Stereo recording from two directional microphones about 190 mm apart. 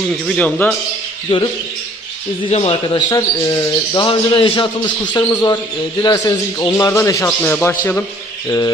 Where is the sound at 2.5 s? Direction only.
30° left (ahead or behind).